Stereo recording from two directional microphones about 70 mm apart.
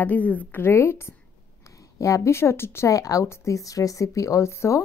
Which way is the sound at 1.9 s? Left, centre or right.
Left.